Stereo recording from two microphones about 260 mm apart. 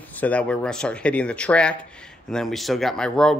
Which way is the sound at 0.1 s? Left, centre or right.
Centre.